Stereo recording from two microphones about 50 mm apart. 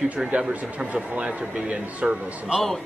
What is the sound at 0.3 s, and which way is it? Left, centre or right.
A man's voice, right.